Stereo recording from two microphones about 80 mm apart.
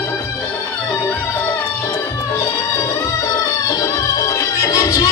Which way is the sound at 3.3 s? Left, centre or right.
Left.